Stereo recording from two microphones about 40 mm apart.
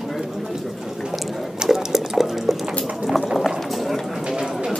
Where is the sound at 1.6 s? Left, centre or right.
Centre.